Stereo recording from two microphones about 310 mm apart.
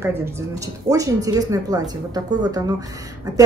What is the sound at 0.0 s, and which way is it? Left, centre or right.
A woman's voice, centre.